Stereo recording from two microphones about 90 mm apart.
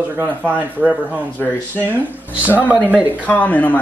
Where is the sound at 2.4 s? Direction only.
20° left (ahead or behind).